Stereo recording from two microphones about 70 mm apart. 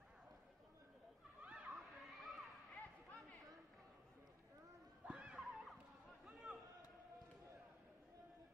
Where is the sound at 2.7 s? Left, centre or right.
Left.